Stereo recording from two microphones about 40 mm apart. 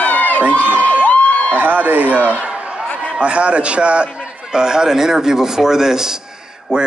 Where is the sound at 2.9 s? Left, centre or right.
Left.